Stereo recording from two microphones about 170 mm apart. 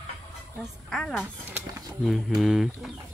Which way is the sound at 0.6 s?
Centre (ahead or behind).